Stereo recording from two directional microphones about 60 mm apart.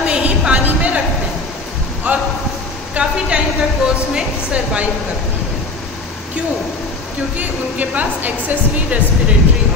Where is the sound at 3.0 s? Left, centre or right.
Centre.